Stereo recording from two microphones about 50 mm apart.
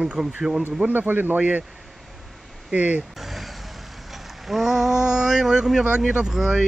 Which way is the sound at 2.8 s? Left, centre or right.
Right.